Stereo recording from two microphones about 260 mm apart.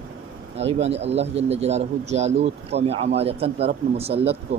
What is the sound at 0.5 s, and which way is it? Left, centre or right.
Speech, right.